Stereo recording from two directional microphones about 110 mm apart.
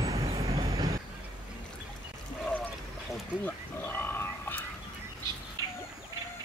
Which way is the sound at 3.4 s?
20° left (ahead or behind).